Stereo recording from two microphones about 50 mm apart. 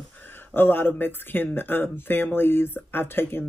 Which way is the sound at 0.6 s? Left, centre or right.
Left.